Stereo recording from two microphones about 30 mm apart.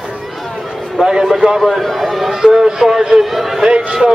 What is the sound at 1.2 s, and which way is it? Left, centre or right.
Speech, centre.